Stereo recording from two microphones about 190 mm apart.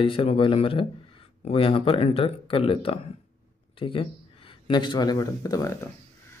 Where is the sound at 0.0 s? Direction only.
30° left (ahead or behind).